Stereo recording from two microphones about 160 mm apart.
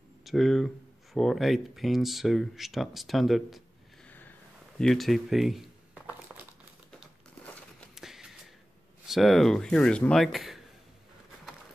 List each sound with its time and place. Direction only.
0.2 s speech: centre (ahead or behind)
4.7 s crumpling: centre (ahead or behind)
6.9 s a sound: centre (ahead or behind)
9.0 s speech: centre (ahead or behind)